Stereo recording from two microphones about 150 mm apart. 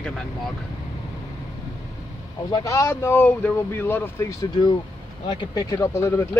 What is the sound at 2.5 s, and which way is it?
Speech, 25° left (ahead or behind).